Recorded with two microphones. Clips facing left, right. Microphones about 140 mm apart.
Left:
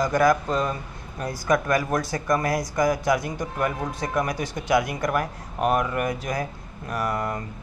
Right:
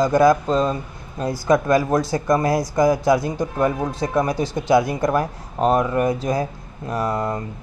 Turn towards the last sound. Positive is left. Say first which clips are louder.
# right 4 dB
turn(degrees=-25)  # may be behind; listen again after turning